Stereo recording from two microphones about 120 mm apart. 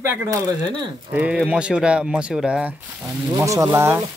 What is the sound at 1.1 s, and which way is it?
Speech, 10° right (ahead or behind).